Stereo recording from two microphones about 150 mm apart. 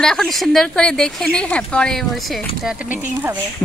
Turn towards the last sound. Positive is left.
turn(degrees=-10)  # may be behind; listen again after turning